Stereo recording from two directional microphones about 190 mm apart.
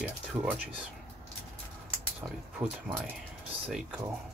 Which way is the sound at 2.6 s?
5° right (ahead or behind).